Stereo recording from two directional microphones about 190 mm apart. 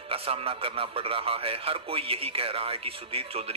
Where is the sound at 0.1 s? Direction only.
30° right (ahead or behind).